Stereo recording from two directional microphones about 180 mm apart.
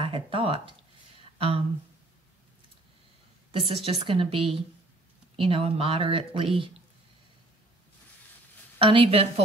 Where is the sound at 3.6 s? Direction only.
30° right (ahead or behind).